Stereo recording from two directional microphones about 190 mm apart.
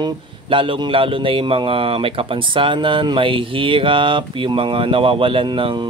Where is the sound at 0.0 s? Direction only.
25° right (ahead or behind).